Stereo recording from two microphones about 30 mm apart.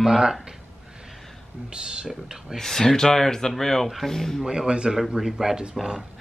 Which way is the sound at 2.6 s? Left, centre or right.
Centre.